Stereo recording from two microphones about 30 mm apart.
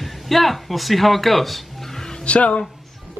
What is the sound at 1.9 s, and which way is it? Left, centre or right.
Music, left.